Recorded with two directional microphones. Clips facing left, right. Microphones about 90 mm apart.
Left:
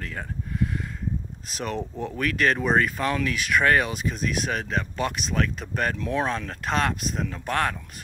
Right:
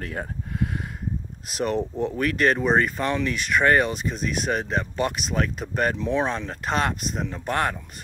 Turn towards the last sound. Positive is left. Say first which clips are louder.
# right 1 dB
turn(degrees=-5)  # may be behind; listen again after turning